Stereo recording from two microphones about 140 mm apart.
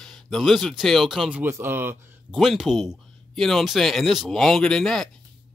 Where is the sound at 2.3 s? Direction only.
Centre (ahead or behind).